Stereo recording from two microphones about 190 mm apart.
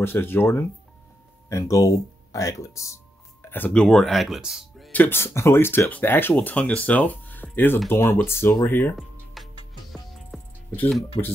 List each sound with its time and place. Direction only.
0.0 s speech: 10° left (ahead or behind)
5.0 s speech: 10° left (ahead or behind)
10.8 s speech: 5° left (ahead or behind)